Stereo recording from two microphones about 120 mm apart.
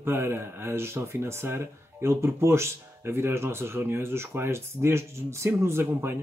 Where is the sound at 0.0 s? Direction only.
20° right (ahead or behind).